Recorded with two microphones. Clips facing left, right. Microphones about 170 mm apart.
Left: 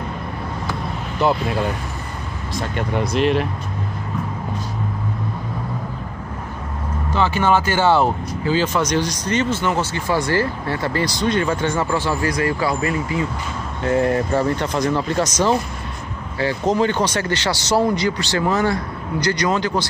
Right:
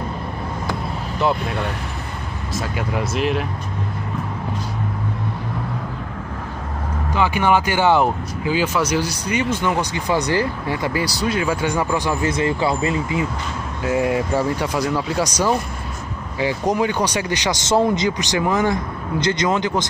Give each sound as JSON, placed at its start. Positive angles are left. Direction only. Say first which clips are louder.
{"t": 1.2, "sound": "speech", "louder": "left 2 dB", "side_deg": 0}
{"t": 7.2, "sound": "speech", "louder": "even", "side_deg": -15}
{"t": 13.8, "sound": "speech", "louder": "left 1 dB", "side_deg": -10}